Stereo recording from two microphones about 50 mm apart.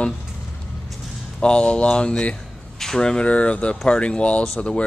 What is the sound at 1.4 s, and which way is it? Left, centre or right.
Speech, left.